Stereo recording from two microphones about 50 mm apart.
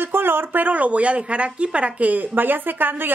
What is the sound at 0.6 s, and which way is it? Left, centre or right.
Speech, right.